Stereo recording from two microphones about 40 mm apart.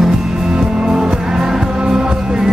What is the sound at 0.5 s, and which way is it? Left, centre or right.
Music, right.